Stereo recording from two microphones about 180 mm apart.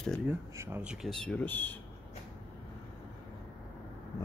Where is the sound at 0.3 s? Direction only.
10° right (ahead or behind).